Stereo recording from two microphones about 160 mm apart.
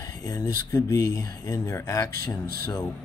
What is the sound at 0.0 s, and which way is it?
Speech, 25° left (ahead or behind).